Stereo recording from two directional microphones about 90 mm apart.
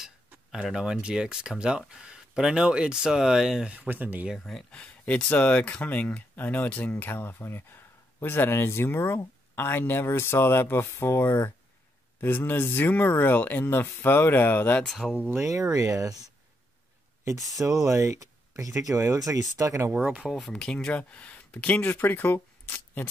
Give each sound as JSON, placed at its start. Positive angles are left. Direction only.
{"t": 0.5, "sound": "speech", "side_deg": -5}
{"t": 4.4, "sound": "speech", "side_deg": 10}
{"t": 14.9, "sound": "speech", "side_deg": 0}
{"t": 15.1, "sound": "speech", "side_deg": -25}
{"t": 15.4, "sound": "speech", "side_deg": -40}
{"t": 17.6, "sound": "speech", "side_deg": -5}
{"t": 17.8, "sound": "speech", "side_deg": -35}
{"t": 19.9, "sound": "speech", "side_deg": -20}
{"t": 20.2, "sound": "speech", "side_deg": 0}